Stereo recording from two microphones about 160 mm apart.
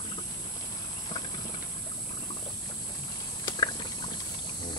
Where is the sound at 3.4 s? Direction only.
30° left (ahead or behind).